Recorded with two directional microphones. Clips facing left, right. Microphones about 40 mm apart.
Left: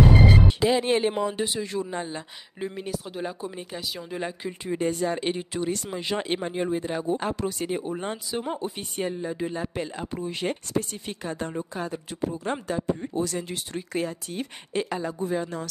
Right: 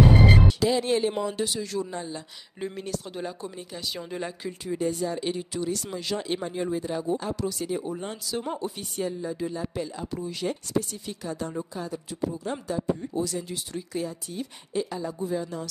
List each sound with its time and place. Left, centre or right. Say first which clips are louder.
0.5 s speech: left 2 dB; left
2.6 s speech: left 1 dB; centre
4.2 s speech: left 2 dB; centre
4.7 s speech: left 2 dB; left
6.1 s speech: left 2 dB; left
8.3 s speech: right 2 dB; left